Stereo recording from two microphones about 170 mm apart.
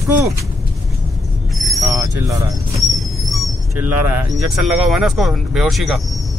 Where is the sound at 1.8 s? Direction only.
20° right (ahead or behind).